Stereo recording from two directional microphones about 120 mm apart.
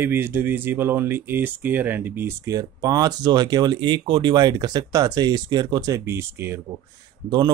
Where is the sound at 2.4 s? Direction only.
30° right (ahead or behind).